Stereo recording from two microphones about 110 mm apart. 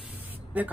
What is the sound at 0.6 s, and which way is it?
Speech, 15° right (ahead or behind).